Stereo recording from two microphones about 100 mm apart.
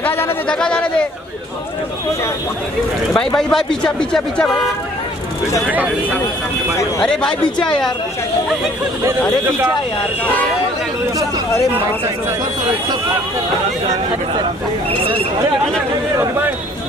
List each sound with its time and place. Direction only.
0.0 s a sound: 20° left (ahead or behind)
0.5 s speech: 10° left (ahead or behind)
3.1 s speech: 10° left (ahead or behind)
7.0 s speech: 10° left (ahead or behind)
16.2 s speech: 20° right (ahead or behind)